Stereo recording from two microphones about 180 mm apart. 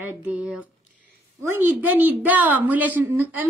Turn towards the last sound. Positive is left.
turn(degrees=-10)  # may be behind; listen again after turning